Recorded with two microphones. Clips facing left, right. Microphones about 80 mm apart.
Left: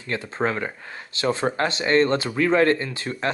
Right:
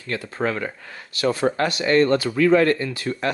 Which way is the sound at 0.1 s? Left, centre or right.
Left.